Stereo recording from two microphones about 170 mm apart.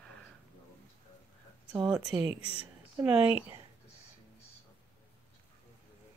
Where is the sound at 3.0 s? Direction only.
10° right (ahead or behind).